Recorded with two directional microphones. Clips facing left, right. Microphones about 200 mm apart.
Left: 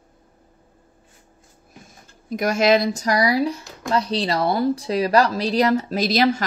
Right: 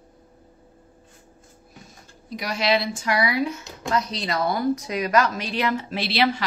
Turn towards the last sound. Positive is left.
turn(degrees=40)  # may be behind; listen again after turning